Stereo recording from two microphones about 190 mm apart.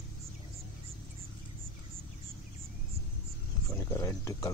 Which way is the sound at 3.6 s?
15° left (ahead or behind).